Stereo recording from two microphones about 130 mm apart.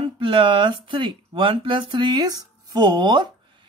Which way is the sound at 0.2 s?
40° right (ahead or behind).